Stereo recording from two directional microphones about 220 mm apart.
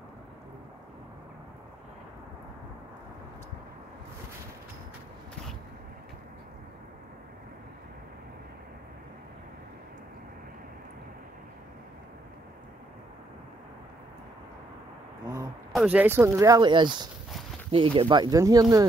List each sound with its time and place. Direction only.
15.7 s speech: 5° right (ahead or behind)